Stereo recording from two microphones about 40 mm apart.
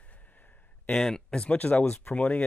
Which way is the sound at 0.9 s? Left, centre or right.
Centre.